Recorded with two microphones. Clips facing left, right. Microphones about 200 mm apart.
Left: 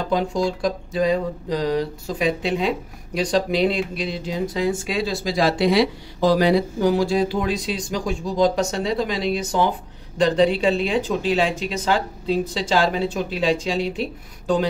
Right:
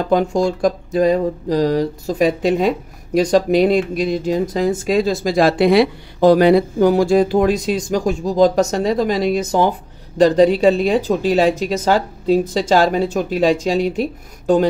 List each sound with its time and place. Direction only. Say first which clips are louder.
0.1 s speech: right 6 dB; 45° right (ahead or behind)